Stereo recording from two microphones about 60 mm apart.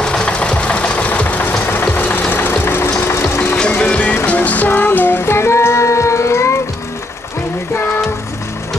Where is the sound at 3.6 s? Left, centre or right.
Left.